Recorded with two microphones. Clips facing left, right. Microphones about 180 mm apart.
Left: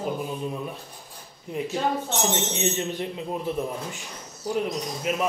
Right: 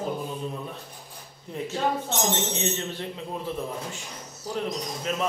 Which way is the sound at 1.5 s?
10° left (ahead or behind).